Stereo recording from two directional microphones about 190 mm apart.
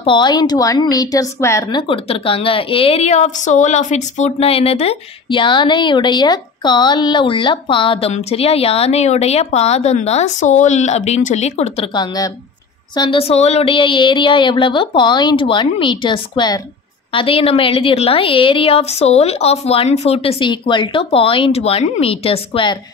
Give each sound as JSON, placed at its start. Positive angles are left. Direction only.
{"t": 0.0, "sound": "a woman's voice", "side_deg": 25}